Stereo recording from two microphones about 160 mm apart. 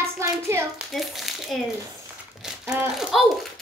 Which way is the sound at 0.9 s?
Centre (ahead or behind).